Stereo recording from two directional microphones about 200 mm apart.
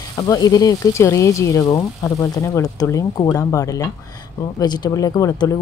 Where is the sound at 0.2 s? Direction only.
20° left (ahead or behind).